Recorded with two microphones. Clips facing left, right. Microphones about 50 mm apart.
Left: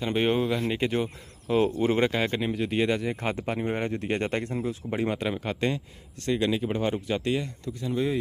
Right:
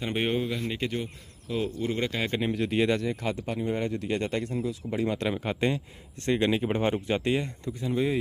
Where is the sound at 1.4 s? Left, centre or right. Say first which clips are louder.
Left 6 dB; left.